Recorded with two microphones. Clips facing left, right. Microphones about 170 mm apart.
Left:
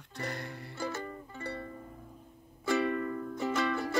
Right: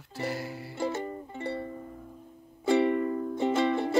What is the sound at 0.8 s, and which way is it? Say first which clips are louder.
Music: right 6 dB; 25° right (ahead or behind).